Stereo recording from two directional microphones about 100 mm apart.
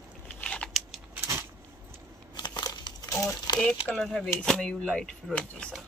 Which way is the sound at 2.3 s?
45° left (ahead or behind).